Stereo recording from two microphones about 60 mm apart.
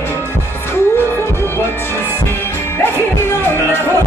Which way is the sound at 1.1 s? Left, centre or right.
Left.